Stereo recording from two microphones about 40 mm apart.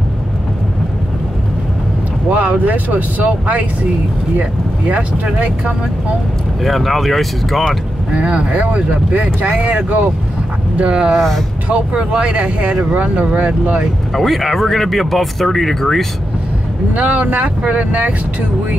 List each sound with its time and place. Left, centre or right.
2.2 s speech: right
6.6 s speech: centre
8.1 s speech: right
10.8 s speech: right
11.1 s speech: centre
11.9 s speech: right
14.1 s speech: centre
16.9 s speech: right